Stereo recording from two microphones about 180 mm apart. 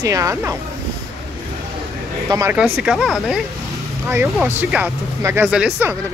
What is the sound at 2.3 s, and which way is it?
Speech, 15° right (ahead or behind).